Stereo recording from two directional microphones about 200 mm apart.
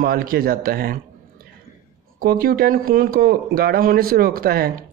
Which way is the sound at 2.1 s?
45° right (ahead or behind).